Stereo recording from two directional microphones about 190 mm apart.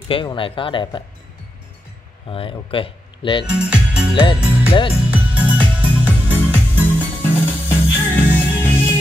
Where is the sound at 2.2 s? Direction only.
30° left (ahead or behind).